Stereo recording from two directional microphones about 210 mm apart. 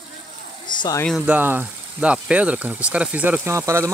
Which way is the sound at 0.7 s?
20° left (ahead or behind).